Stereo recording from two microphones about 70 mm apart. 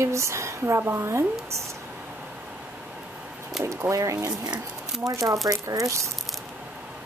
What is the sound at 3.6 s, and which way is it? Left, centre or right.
Speech, right.